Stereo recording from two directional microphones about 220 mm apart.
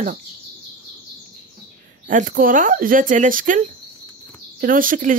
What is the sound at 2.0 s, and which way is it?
Speech, 35° right (ahead or behind).